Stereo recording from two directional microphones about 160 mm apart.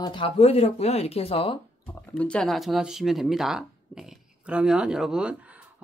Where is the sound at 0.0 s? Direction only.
30° left (ahead or behind).